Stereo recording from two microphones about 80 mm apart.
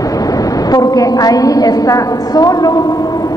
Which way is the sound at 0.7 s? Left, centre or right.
Left.